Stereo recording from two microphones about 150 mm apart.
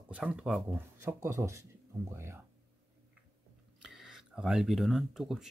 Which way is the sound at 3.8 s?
Centre (ahead or behind).